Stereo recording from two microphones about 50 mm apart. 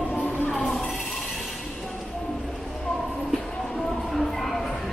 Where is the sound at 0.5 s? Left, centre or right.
Centre.